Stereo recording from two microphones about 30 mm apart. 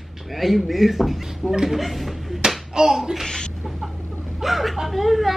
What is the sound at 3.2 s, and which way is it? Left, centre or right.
Laughter, left.